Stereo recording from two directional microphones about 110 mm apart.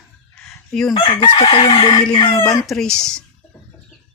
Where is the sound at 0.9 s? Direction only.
45° left (ahead or behind).